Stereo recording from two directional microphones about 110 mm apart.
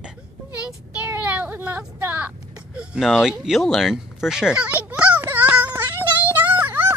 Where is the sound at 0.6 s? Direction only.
15° right (ahead or behind).